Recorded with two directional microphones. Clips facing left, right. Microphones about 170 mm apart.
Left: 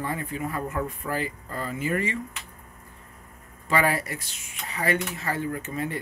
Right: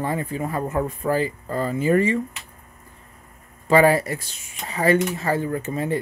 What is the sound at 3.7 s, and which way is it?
Speech, 30° right (ahead or behind).